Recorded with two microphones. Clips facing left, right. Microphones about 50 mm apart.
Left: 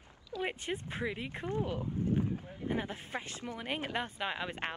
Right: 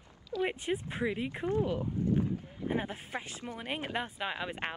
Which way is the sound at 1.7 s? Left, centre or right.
Right.